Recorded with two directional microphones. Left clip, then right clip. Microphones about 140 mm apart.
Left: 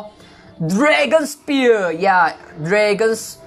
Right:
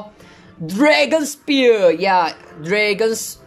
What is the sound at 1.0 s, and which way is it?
Speech, 25° right (ahead or behind).